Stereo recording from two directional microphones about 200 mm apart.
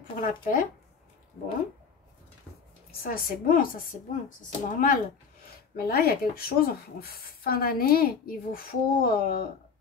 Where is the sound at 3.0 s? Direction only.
45° left (ahead or behind).